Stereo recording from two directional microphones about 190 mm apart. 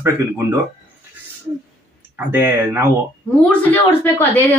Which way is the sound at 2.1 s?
10° right (ahead or behind).